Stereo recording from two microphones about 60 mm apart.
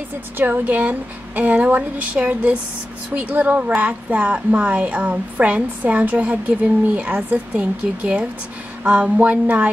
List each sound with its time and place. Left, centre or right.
0.4 s a woman's voice: right